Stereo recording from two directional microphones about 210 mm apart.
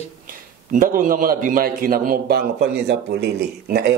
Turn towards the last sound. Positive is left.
turn(degrees=-50)  # may be behind; listen again after turning